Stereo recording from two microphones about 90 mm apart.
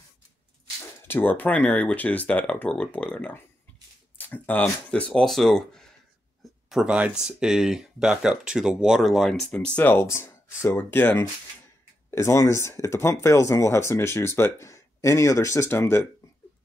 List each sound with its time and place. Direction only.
1.0 s speech: 25° left (ahead or behind); by 5.9 s 5° left (ahead or behind)
6.4 s a sound: 5° right (ahead or behind)
7.0 s speech: 10° right (ahead or behind)
9.5 s speech: 15° left (ahead or behind)
10.0 s speech: 30° left (ahead or behind)